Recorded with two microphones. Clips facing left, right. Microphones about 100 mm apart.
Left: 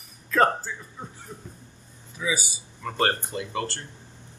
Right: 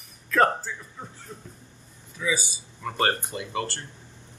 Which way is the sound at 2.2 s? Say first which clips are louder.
Right 1 dB; 15° left (ahead or behind).